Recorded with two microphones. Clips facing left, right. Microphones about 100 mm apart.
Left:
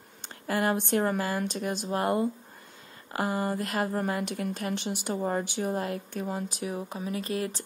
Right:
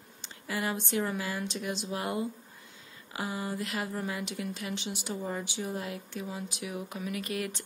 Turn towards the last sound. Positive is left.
turn(degrees=30)  # may be behind; listen again after turning